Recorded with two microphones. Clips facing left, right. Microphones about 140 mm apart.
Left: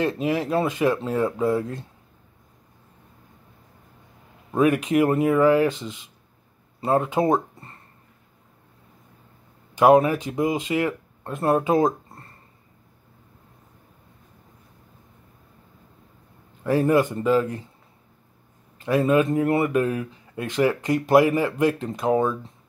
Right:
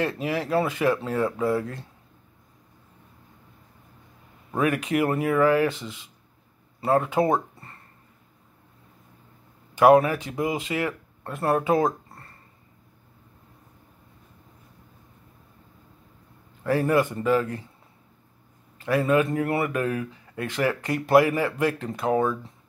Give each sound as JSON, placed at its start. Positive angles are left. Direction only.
{"t": 0.0, "sound": "speech", "side_deg": 20}
{"t": 4.6, "sound": "speech", "side_deg": 20}
{"t": 9.8, "sound": "speech", "side_deg": 20}
{"t": 16.6, "sound": "speech", "side_deg": 20}
{"t": 18.8, "sound": "speech", "side_deg": 20}